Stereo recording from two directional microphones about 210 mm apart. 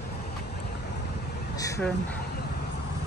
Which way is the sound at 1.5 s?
15° left (ahead or behind).